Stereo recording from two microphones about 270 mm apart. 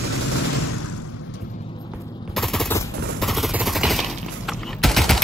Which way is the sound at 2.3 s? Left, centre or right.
Centre.